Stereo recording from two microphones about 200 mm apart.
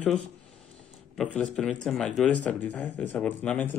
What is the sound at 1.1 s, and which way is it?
Speech, 5° left (ahead or behind).